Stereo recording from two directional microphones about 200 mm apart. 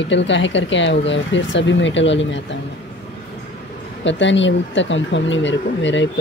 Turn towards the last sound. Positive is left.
turn(degrees=65)  # may be behind; listen again after turning